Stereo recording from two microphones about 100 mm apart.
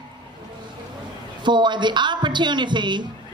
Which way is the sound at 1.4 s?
50° right (ahead or behind).